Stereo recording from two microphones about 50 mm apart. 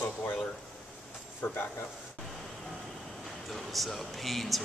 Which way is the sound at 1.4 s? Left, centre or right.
Left.